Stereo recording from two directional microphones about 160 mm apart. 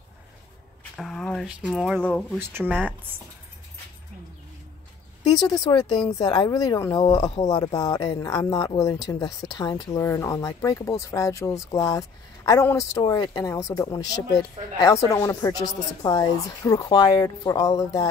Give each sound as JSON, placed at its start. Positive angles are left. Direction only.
{"t": 0.9, "sound": "speech", "side_deg": 0}
{"t": 2.3, "sound": "speech", "side_deg": -15}
{"t": 5.5, "sound": "speech", "side_deg": 25}